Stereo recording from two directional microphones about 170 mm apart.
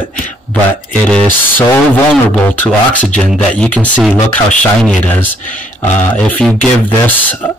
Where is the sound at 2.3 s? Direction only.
10° left (ahead or behind).